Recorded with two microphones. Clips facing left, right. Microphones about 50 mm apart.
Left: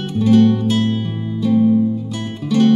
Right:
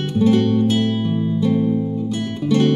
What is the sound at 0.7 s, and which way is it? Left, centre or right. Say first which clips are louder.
Music: even; centre.